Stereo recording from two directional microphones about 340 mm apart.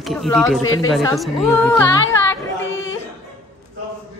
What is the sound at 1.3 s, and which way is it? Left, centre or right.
Speech, centre.